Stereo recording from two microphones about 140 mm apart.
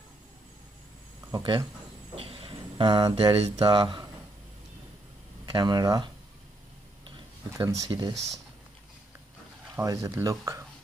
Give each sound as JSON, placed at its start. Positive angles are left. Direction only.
{"t": 1.3, "sound": "speech", "side_deg": -35}
{"t": 5.5, "sound": "speech", "side_deg": -30}
{"t": 7.5, "sound": "speech", "side_deg": -20}
{"t": 9.8, "sound": "speech", "side_deg": -20}